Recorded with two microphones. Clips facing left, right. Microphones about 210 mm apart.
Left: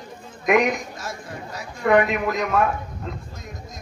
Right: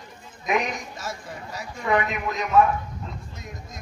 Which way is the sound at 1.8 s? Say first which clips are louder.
Left 6 dB; 60° left (ahead or behind).